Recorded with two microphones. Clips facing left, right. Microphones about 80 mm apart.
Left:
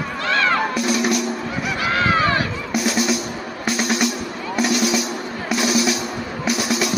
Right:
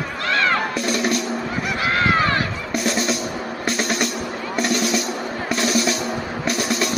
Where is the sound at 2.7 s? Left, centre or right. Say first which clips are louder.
Left 2 dB; centre.